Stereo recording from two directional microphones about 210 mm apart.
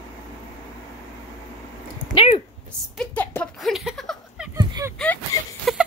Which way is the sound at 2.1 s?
25° left (ahead or behind).